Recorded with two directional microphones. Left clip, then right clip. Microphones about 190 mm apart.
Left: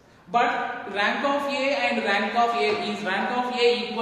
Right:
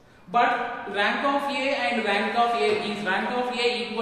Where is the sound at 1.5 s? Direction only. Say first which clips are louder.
Left 1 dB; 20° left (ahead or behind).